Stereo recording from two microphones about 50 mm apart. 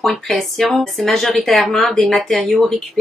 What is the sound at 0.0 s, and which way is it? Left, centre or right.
Speech, centre.